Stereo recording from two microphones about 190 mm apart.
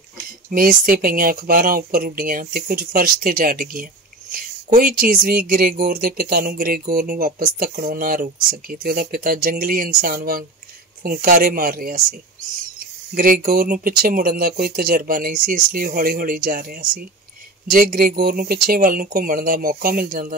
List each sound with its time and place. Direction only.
0.5 s speech: 50° right (ahead or behind)